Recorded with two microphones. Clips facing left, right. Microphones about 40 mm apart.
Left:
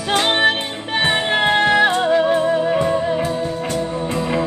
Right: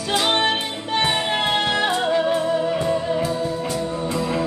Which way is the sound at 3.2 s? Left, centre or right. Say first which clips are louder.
Left 2 dB; left.